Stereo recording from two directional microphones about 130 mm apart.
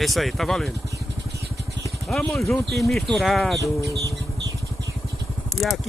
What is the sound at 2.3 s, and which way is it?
Speech, centre (ahead or behind).